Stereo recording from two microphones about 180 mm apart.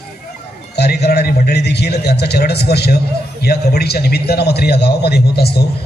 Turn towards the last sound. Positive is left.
turn(degrees=65)  # may be behind; listen again after turning